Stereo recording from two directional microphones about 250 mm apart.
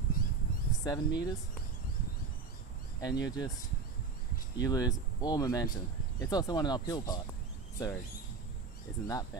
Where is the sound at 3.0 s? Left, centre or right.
Centre.